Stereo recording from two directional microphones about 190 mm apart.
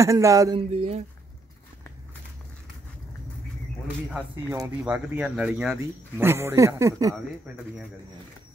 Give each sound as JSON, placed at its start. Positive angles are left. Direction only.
{"t": 0.0, "sound": "speech", "side_deg": -15}
{"t": 0.6, "sound": "speech", "side_deg": -35}
{"t": 4.5, "sound": "speech", "side_deg": -10}